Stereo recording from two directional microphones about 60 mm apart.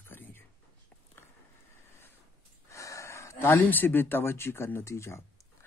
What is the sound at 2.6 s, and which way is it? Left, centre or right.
Gasp, left.